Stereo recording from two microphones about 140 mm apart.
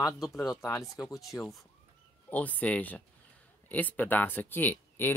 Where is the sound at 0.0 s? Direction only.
25° left (ahead or behind).